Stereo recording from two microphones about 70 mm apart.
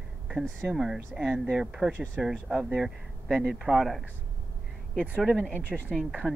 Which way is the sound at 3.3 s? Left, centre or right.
Centre.